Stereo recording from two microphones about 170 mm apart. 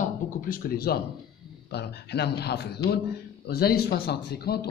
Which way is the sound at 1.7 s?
75° left (ahead or behind).